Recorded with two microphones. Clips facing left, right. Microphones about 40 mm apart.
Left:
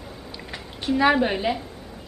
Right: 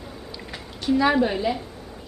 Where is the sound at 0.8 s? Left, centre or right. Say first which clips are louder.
Even; centre.